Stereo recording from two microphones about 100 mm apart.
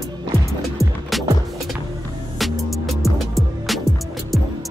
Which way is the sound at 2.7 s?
Centre (ahead or behind).